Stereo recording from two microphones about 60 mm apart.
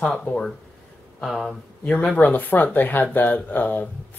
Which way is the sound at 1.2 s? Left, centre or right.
Centre.